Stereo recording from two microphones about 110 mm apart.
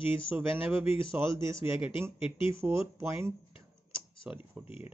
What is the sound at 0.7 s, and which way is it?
Speech, 55° left (ahead or behind).